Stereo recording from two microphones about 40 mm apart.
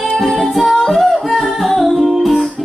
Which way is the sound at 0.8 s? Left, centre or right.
Centre.